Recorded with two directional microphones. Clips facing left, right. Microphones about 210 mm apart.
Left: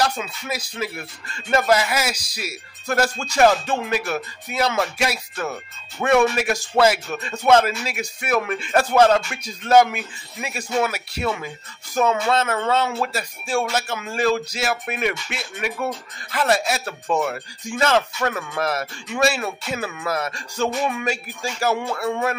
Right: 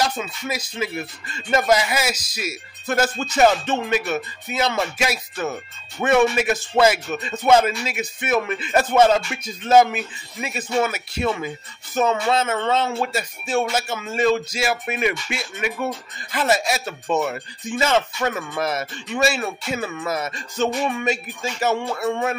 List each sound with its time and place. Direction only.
0.1 s speech: 5° left (ahead or behind)
14.0 s speech: 5° left (ahead or behind)
14.9 s speech: 5° right (ahead or behind)